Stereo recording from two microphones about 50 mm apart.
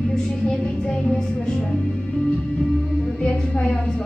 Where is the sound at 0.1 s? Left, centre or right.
Centre.